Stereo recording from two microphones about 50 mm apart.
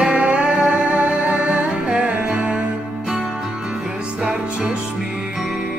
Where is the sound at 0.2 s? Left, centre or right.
Right.